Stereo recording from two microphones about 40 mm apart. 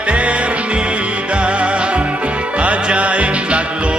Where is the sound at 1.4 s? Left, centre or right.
Right.